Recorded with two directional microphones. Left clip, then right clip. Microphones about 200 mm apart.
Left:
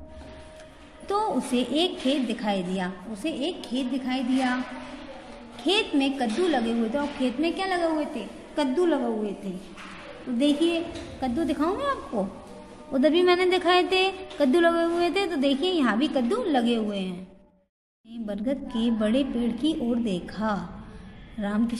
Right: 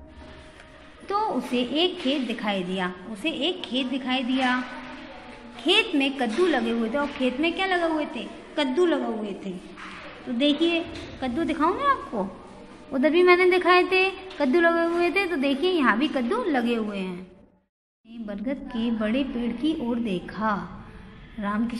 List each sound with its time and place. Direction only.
1.0 s a woman's voice: 20° left (ahead or behind)
5.7 s a woman's voice: 10° left (ahead or behind)
10.4 s a woman's voice: 10° left (ahead or behind)
18.2 s a woman's voice: 20° left (ahead or behind)